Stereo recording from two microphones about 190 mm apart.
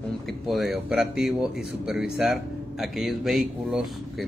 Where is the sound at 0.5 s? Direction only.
Centre (ahead or behind).